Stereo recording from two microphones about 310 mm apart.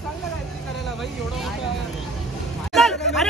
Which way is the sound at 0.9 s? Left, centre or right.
Centre.